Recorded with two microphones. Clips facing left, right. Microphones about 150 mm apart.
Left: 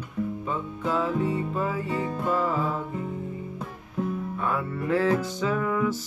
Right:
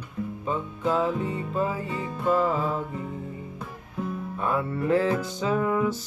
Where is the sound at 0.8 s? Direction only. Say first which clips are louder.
Right 2 dB; 20° right (ahead or behind).